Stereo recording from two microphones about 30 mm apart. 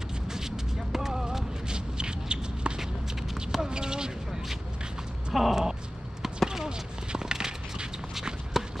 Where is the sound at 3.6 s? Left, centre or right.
Right.